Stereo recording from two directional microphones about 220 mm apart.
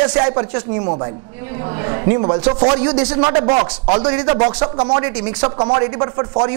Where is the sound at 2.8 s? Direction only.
20° right (ahead or behind).